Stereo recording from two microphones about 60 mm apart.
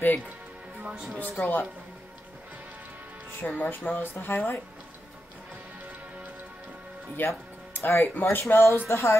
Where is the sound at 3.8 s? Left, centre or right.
Left.